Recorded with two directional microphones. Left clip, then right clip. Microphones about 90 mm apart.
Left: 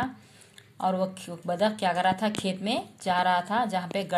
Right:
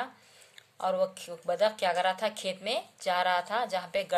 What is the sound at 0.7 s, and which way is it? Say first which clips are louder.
A woman's voice: left 1 dB; 30° right (ahead or behind).